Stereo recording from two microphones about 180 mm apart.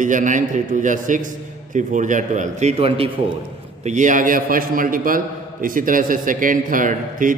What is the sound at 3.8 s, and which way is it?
A man's voice, 40° right (ahead or behind).